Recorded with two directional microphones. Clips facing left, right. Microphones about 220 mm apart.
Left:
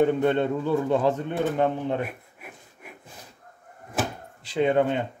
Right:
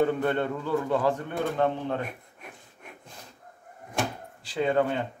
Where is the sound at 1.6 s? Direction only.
10° left (ahead or behind).